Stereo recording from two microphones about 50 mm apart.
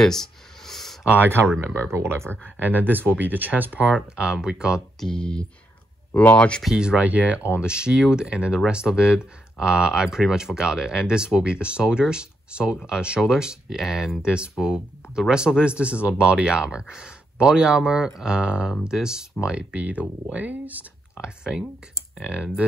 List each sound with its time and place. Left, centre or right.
0.0 s a sound: centre
1.0 s speech: right
1.9 s speech: right
2.6 s speech: right
3.9 s speech: centre
5.0 s speech: centre
6.7 s speech: centre
7.0 s speech: right
10.0 s speech: centre
14.2 s speech: centre
21.2 s speech: centre